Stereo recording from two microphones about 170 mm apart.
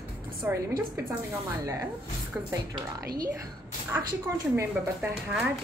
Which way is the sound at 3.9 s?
10° right (ahead or behind).